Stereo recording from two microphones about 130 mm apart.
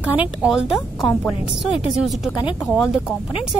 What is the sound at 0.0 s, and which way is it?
A woman's voice, 10° right (ahead or behind).